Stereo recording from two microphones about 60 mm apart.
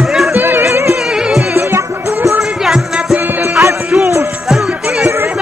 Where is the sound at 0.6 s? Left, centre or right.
Right.